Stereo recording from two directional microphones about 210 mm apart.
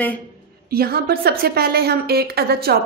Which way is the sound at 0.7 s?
45° right (ahead or behind).